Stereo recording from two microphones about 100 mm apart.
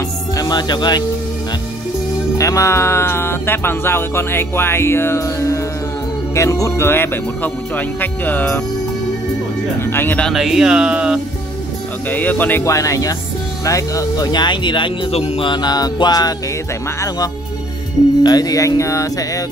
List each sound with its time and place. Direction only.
0.4 s speech: 45° left (ahead or behind)
2.3 s speech: 30° left (ahead or behind); by 8.6 s 15° left (ahead or behind)
9.8 s speech: 20° left (ahead or behind)
10.2 s speech: 5° right (ahead or behind)
12.1 s speech: 15° left (ahead or behind)
12.6 s speech: 35° left (ahead or behind); by 14.9 s 50° left (ahead or behind)
15.0 s music: 75° left (ahead or behind)
15.4 s speech: 45° left (ahead or behind)
18.2 s speech: 40° left (ahead or behind)